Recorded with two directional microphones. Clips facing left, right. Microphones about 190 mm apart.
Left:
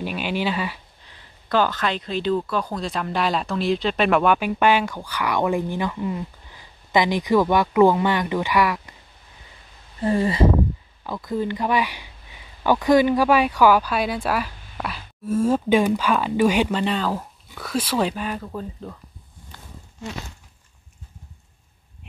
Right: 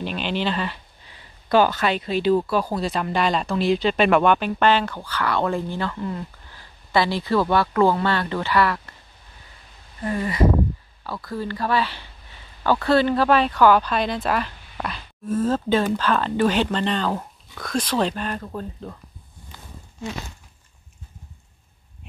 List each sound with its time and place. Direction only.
0.0 s speech: 10° left (ahead or behind)
1.5 s speech: 10° right (ahead or behind); by 8.9 s 10° left (ahead or behind)
10.0 s speech: 30° left (ahead or behind); by 18.9 s centre (ahead or behind)